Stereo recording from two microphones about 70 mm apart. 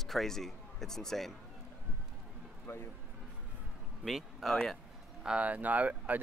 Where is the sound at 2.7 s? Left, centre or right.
Left.